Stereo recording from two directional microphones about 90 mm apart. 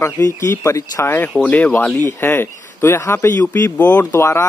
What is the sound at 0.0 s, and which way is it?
A man's voice, 35° left (ahead or behind).